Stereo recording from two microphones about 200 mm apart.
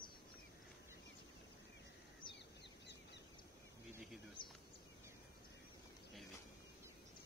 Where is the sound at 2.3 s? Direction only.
60° left (ahead or behind).